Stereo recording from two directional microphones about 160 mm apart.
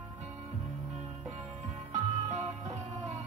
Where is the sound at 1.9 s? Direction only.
45° right (ahead or behind).